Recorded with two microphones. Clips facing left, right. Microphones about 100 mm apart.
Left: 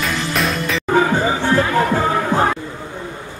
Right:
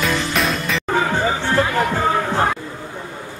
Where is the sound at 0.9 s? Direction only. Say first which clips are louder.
Left 3 dB; 15° left (ahead or behind).